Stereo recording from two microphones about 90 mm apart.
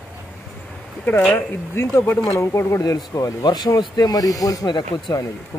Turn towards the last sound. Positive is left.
turn(degrees=50)  # may be behind; listen again after turning